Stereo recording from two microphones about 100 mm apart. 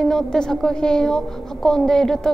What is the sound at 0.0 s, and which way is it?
A woman's voice, 5° left (ahead or behind).